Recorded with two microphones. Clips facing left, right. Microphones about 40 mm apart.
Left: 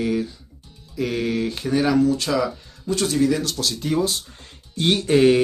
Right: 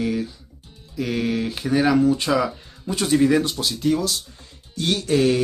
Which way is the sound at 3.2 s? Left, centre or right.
Right.